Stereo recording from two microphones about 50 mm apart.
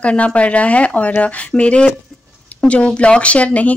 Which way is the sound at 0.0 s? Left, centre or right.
Left.